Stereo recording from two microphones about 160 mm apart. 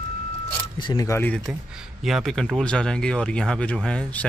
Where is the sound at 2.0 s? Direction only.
Centre (ahead or behind).